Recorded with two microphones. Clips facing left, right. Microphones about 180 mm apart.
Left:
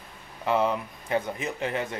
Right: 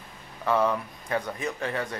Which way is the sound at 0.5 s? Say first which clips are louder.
Even; 20° left (ahead or behind).